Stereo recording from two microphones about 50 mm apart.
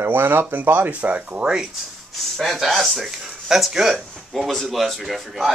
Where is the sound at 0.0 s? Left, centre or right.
Right.